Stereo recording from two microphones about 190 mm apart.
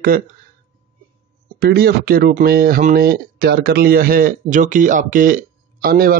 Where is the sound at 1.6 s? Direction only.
55° right (ahead or behind).